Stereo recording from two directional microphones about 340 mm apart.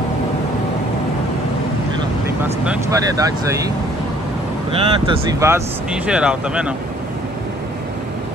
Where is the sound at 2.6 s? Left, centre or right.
Centre.